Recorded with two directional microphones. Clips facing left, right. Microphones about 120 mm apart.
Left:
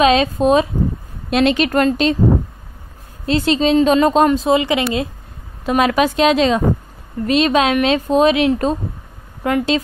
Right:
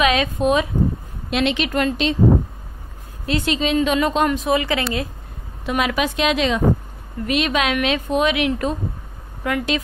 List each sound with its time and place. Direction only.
0.0 s a woman's voice: 30° left (ahead or behind)
1.3 s a woman's voice: 45° left (ahead or behind)
3.3 s a woman's voice: 35° left (ahead or behind)
5.7 s a woman's voice: 40° left (ahead or behind)